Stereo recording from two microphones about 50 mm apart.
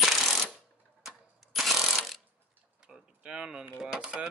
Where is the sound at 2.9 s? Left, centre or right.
Centre.